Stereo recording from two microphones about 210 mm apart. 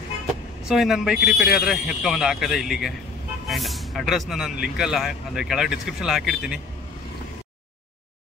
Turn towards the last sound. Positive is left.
turn(degrees=0)  # may be behind; listen again after turning